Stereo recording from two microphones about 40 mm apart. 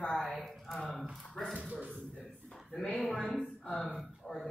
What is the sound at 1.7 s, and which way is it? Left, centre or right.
Speech, right.